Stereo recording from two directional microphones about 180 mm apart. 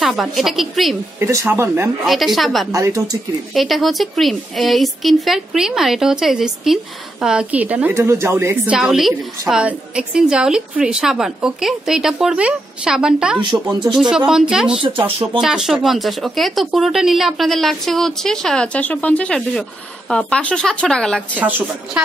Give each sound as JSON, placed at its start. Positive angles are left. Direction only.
{"t": 0.0, "sound": "a woman's voice", "side_deg": 0}
{"t": 1.2, "sound": "speech", "side_deg": -15}
{"t": 2.0, "sound": "a woman's voice", "side_deg": 0}
{"t": 2.7, "sound": "speech", "side_deg": -20}
{"t": 3.5, "sound": "a woman's voice", "side_deg": 0}
{"t": 13.4, "sound": "speech", "side_deg": -25}
{"t": 14.1, "sound": "a woman's voice", "side_deg": -5}
{"t": 14.8, "sound": "speech", "side_deg": -30}
{"t": 15.4, "sound": "a woman's voice", "side_deg": 0}
{"t": 21.4, "sound": "speech", "side_deg": -10}